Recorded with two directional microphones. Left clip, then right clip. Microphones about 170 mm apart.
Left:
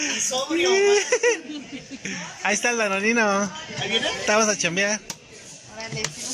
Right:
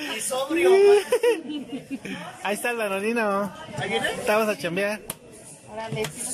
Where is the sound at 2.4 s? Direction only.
5° right (ahead or behind).